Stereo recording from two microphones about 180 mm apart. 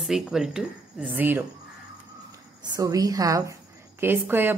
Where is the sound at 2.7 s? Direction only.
20° right (ahead or behind).